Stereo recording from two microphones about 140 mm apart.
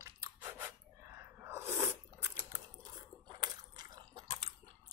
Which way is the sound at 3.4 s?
30° right (ahead or behind).